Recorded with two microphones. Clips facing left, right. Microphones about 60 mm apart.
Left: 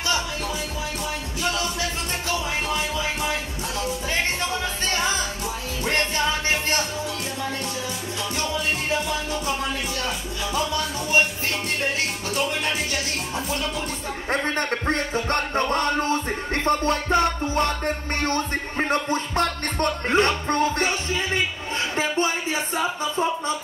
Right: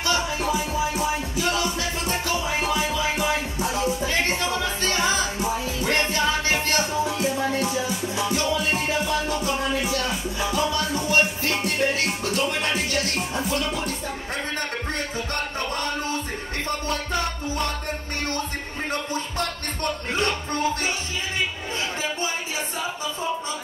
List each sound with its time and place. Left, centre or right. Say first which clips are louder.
2.3 s music: even; centre
12.3 s music: left 1 dB; centre
14.9 s music: left 5 dB; left
21.9 s music: left 5 dB; left